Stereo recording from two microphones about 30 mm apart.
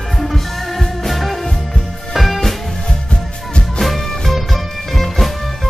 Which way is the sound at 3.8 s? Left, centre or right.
Centre.